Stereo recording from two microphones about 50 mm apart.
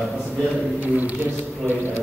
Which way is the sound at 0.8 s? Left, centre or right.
Right.